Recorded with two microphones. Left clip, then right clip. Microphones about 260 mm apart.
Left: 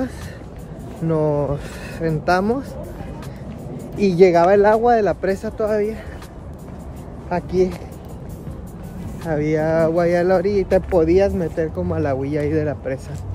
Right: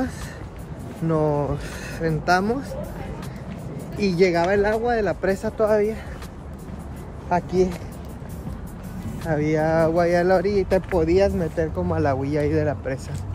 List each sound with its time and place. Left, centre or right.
1.0 s speech: centre
4.0 s speech: centre
5.2 s speech: centre
7.2 s speech: centre
9.2 s speech: centre